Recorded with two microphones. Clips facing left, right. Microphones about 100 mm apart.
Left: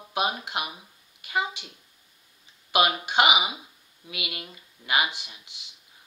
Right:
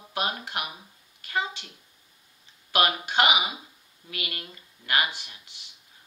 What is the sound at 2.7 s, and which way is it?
Speech, 15° left (ahead or behind).